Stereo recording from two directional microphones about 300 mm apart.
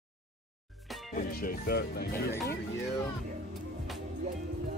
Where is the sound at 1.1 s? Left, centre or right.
Left.